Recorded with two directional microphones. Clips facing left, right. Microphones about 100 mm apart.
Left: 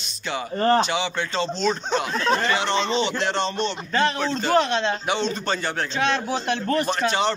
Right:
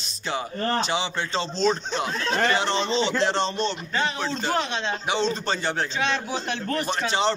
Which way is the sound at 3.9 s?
Centre (ahead or behind).